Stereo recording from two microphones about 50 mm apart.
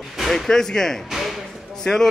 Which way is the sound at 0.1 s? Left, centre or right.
Centre.